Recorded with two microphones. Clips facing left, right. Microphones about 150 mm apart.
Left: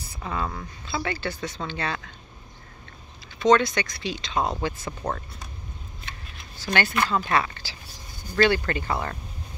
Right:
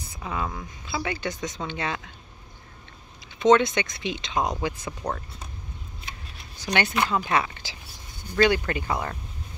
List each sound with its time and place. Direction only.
0.2 s speech: 10° right (ahead or behind)
3.3 s speech: 20° right (ahead or behind)
4.8 s speech: 5° left (ahead or behind)
6.6 s speech: 20° right (ahead or behind)